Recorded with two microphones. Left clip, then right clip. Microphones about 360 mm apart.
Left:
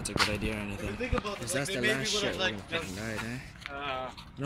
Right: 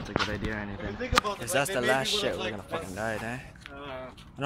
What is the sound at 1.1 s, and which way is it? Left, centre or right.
Speech, right.